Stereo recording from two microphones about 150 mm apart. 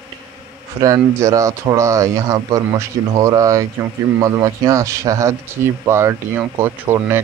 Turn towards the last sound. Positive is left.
turn(degrees=-15)  # may be behind; listen again after turning